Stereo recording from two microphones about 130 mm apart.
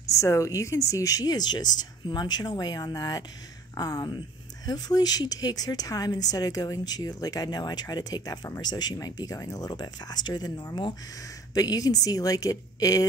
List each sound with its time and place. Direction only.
0.1 s a woman's voice: 25° left (ahead or behind)